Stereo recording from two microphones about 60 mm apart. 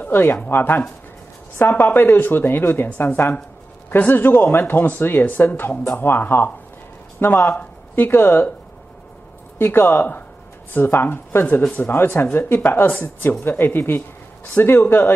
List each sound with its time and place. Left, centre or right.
0.1 s a woman's voice: left
4.1 s speech: left
9.6 s speech: left